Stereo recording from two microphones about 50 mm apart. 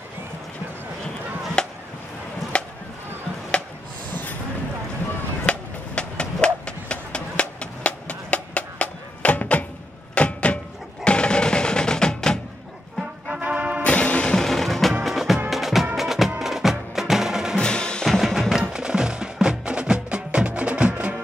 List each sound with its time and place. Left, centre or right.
1.6 s chop: centre
4.1 s a sound: left
5.4 s a sound: left
11.1 s music: centre
13.4 s music: right
13.8 s music: left
14.3 s music: centre
17.6 s music: centre
18.0 s drum: centre
18.6 s music: centre; by 21.2 s right